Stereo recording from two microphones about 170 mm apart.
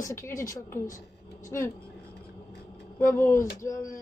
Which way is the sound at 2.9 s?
15° left (ahead or behind).